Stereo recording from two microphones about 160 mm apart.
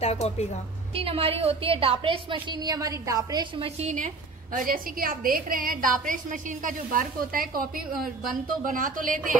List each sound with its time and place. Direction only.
0.0 s a woman's voice: 40° left (ahead or behind)
0.9 s a woman's voice: 35° right (ahead or behind)
3.9 s a woman's voice: 55° right (ahead or behind)